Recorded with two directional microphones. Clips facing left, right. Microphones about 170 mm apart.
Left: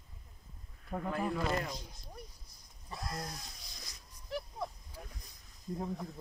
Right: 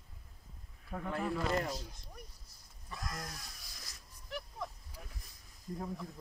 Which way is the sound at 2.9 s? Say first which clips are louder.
Left 3 dB; 30° left (ahead or behind).